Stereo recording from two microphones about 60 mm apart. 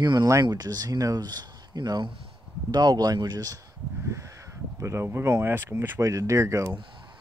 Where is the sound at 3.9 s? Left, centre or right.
Right.